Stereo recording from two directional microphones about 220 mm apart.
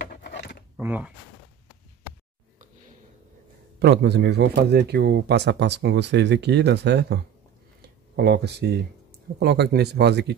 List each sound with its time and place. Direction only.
0.1 s scissors: 50° left (ahead or behind)
0.7 s speech: 10° right (ahead or behind)
3.8 s speech: 50° right (ahead or behind)
8.2 s speech: 50° right (ahead or behind)